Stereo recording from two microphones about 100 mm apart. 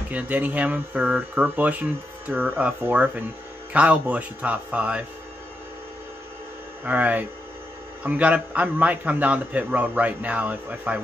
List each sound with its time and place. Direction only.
0.1 s speech: 15° right (ahead or behind)
6.8 s speech: 15° right (ahead or behind)